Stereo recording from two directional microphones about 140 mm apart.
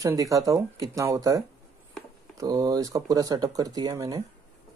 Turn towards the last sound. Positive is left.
turn(degrees=-25)  # may be behind; listen again after turning